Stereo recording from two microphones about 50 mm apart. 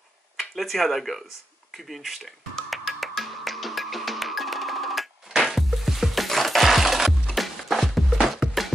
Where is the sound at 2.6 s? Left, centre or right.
Centre.